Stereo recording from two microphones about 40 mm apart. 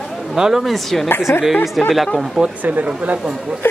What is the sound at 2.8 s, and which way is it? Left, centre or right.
Speech, right.